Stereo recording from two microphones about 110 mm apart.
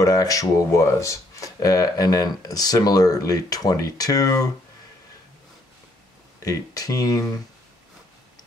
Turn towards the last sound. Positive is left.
turn(degrees=30)  # may be behind; listen again after turning